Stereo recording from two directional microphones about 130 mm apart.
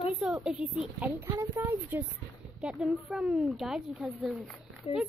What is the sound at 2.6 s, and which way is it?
A woman's voice, centre (ahead or behind).